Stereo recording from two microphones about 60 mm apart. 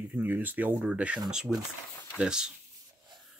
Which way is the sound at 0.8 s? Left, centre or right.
Centre.